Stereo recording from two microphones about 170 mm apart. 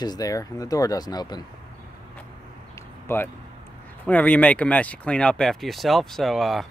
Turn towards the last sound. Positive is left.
turn(degrees=0)  # may be behind; listen again after turning